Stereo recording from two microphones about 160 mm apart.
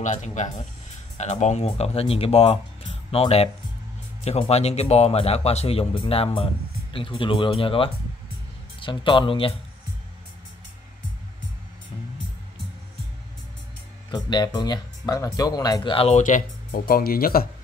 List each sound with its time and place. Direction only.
0.0 s speech: 50° left (ahead or behind); by 9.5 s 30° left (ahead or behind)
14.1 s speech: 25° left (ahead or behind)
16.2 s speech: 55° left (ahead or behind)